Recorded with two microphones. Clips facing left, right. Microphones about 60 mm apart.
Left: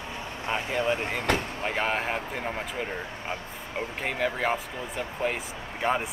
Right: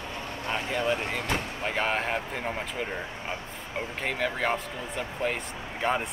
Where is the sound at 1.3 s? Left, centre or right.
Left.